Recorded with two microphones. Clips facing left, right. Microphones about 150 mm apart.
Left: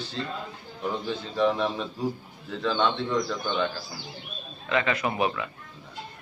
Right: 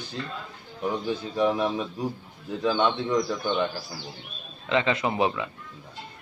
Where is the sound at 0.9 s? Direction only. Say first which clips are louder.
Right 2 dB; 10° right (ahead or behind).